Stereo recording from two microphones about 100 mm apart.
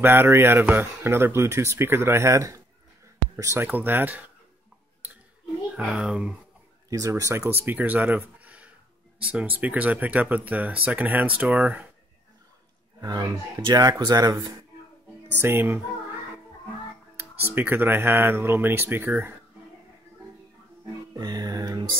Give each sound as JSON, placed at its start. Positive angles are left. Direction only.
{"t": 0.0, "sound": "speech", "side_deg": -20}
{"t": 3.6, "sound": "speech", "side_deg": -20}
{"t": 5.8, "sound": "speech", "side_deg": -10}
{"t": 6.9, "sound": "speech", "side_deg": -35}
{"t": 13.0, "sound": "speech", "side_deg": -40}
{"t": 15.3, "sound": "speech", "side_deg": -20}
{"t": 17.2, "sound": "speech", "side_deg": -20}
{"t": 21.2, "sound": "music", "side_deg": -45}